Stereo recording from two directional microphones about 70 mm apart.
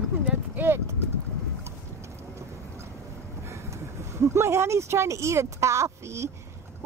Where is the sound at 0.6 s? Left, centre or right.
Right.